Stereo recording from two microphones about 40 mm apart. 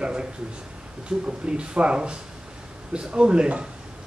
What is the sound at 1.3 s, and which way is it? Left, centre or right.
A man's voice, right.